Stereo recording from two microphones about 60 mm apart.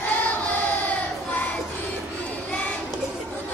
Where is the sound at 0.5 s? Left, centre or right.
Left.